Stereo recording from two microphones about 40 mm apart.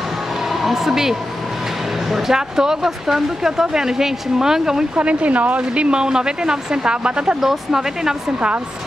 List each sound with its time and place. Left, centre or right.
0.5 s speech: centre
4.9 s speech: right
5.6 s speech: right
7.3 s speech: centre